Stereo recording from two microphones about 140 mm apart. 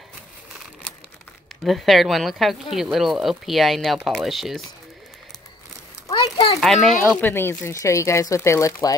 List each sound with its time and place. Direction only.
1.6 s speech: centre (ahead or behind)
6.0 s a sound: 45° left (ahead or behind)
6.6 s speech: centre (ahead or behind)
7.2 s speech: 15° left (ahead or behind)